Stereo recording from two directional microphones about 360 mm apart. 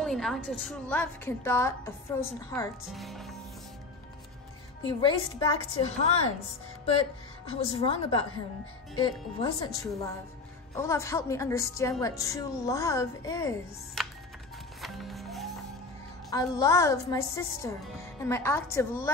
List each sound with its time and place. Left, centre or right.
0.0 s a woman's voice: centre
4.8 s a woman's voice: centre
7.5 s a woman's voice: centre
14.8 s music: centre
16.3 s a woman's voice: centre